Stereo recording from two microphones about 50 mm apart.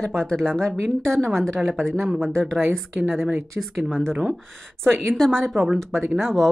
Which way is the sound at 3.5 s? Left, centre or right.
Centre.